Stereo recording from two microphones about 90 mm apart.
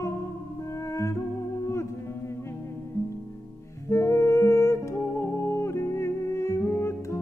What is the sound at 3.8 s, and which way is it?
Music, 35° left (ahead or behind).